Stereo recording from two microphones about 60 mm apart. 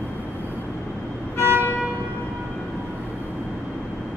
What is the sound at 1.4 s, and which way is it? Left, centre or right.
Vehicle, right.